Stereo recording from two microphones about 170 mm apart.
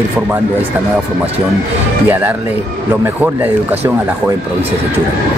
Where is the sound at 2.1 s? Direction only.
10° right (ahead or behind).